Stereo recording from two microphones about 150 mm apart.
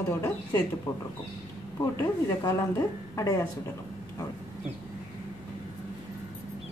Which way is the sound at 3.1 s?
20° left (ahead or behind).